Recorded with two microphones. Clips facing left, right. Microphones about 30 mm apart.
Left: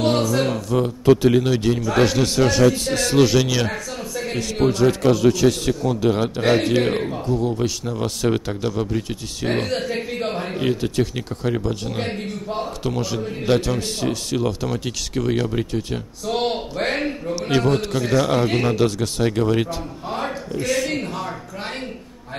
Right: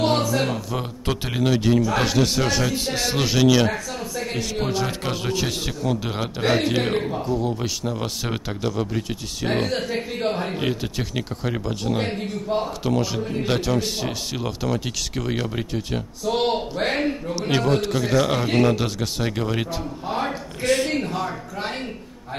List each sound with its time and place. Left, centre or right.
0.0 s a sound: centre
0.4 s a man's voice: centre
1.3 s a man's voice: centre
3.7 s a sound: centre
4.6 s a man's voice: centre
5.1 s a man's voice: right
5.7 s a man's voice: centre
20.6 s a man's voice: right
21.1 s a sound: centre